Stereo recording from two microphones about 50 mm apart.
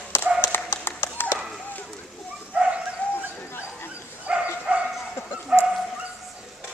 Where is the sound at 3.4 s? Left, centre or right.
Left.